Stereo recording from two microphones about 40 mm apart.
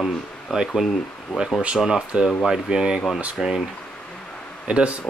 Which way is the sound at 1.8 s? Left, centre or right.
Centre.